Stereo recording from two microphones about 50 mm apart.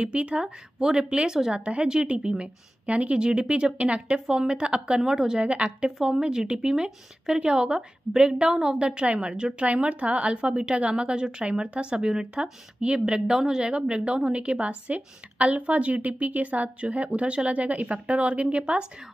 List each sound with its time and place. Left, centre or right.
0.0 s a woman's voice: right